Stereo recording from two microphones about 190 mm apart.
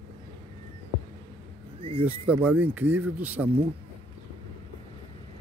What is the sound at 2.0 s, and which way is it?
Speech, 10° right (ahead or behind).